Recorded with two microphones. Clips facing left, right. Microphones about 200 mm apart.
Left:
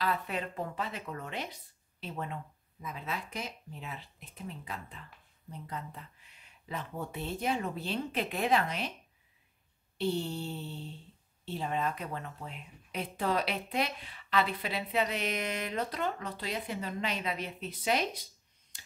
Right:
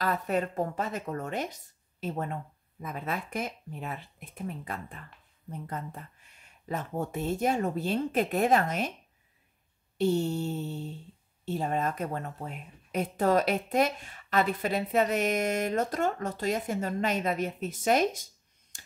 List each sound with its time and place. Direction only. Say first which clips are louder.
0.0 s speech: right 5 dB; 45° right (ahead or behind)
9.9 s speech: right 6 dB; 45° right (ahead or behind)